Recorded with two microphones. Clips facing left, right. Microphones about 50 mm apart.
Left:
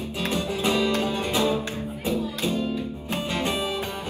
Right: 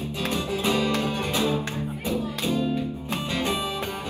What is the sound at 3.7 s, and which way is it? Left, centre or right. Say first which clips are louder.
Music: even; right.